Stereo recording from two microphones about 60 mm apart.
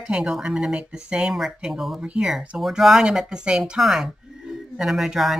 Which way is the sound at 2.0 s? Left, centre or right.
Centre.